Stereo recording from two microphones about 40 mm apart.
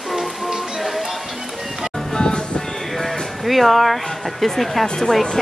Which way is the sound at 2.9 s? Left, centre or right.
Centre.